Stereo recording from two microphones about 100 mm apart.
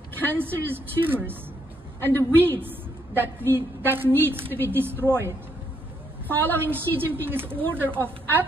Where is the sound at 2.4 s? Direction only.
20° right (ahead or behind).